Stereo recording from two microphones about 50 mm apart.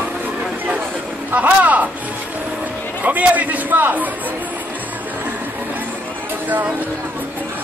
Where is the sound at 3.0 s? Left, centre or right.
Right.